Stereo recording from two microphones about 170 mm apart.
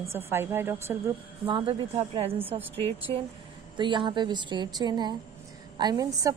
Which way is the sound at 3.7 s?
30° right (ahead or behind).